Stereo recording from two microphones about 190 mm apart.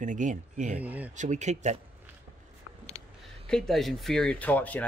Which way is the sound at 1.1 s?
40° right (ahead or behind).